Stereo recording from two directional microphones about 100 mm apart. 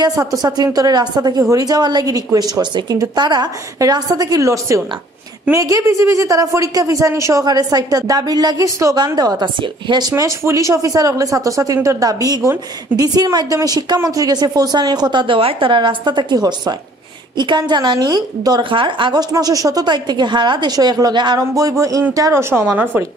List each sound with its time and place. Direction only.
0.0 s a woman's voice: 40° right (ahead or behind)
7.4 s a woman's voice: 40° right (ahead or behind)
18.6 s speech: 60° right (ahead or behind)
19.3 s a woman's voice: 35° right (ahead or behind)
21.5 s a woman's voice: 35° right (ahead or behind)